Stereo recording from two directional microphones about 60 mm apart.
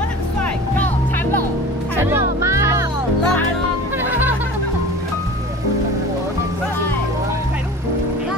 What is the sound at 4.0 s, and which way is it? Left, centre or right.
Music, right.